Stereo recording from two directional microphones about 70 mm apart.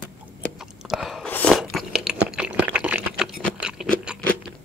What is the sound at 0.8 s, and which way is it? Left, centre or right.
Chewing, centre.